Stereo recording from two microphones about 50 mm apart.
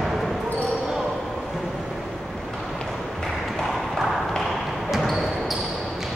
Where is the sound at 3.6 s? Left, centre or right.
Centre.